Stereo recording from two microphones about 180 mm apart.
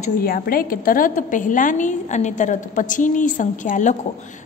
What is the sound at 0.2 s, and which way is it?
A woman's voice, 55° left (ahead or behind).